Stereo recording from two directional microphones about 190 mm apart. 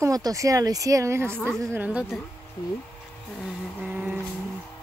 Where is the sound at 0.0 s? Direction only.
20° right (ahead or behind).